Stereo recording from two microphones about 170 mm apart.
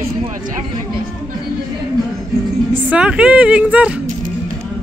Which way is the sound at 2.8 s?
5° right (ahead or behind).